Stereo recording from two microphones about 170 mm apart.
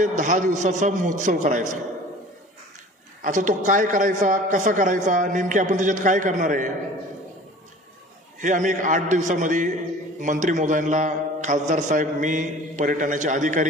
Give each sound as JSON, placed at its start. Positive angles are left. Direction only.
{"t": 0.0, "sound": "a man's voice", "side_deg": -45}
{"t": 3.2, "sound": "a man's voice", "side_deg": -50}
{"t": 8.4, "sound": "a man's voice", "side_deg": -45}